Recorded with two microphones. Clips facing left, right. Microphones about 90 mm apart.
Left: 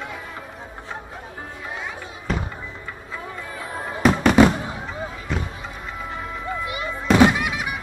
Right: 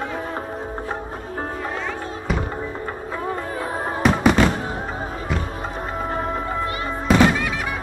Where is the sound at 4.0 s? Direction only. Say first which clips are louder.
Even; centre (ahead or behind).